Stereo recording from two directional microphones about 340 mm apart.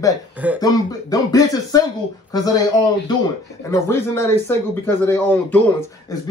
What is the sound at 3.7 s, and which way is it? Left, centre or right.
Speech, centre.